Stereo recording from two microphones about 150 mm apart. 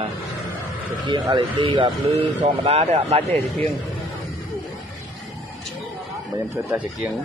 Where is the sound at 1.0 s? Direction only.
30° right (ahead or behind).